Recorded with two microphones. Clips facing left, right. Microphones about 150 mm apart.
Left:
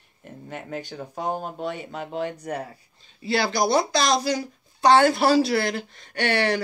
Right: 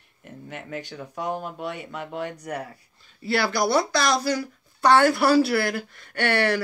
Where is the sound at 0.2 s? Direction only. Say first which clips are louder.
Left 1 dB; 40° left (ahead or behind).